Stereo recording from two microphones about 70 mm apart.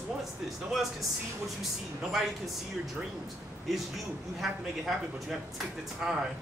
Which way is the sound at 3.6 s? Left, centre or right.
Centre.